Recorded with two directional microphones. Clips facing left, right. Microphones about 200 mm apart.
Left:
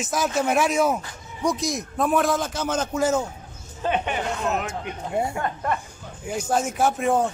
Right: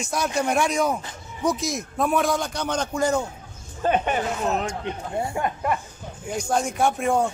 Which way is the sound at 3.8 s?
45° right (ahead or behind).